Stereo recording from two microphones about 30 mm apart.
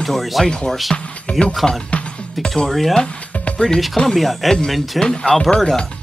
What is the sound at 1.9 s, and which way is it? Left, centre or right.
Music, left.